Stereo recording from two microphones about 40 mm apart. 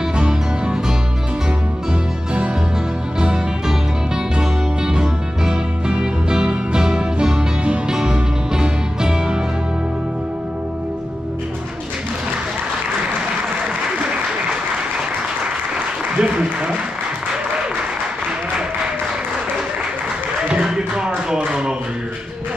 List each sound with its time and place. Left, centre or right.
0.1 s music: right
3.2 s music: centre
16.2 s applause: right
20.4 s a sound: centre